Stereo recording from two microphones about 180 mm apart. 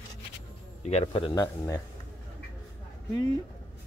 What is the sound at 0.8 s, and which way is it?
Speech, 35° left (ahead or behind).